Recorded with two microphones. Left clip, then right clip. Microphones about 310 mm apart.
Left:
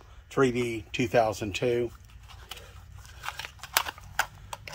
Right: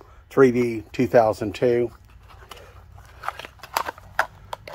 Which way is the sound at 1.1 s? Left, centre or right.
Centre.